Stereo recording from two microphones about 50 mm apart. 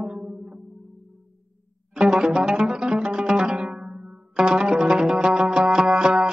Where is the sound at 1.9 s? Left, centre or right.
Centre.